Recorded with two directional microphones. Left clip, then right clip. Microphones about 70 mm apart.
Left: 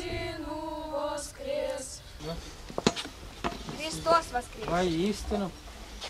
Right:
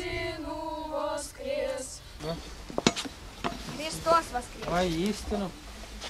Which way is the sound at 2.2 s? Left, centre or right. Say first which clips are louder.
Right 3 dB; right.